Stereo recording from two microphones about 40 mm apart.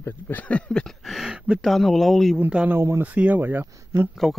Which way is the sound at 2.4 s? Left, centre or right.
Right.